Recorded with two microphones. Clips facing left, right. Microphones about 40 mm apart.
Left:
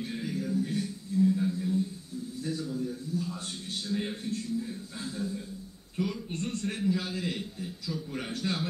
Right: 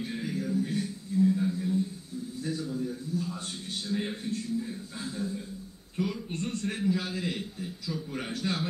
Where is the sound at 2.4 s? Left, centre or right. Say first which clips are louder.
Right 1 dB; centre.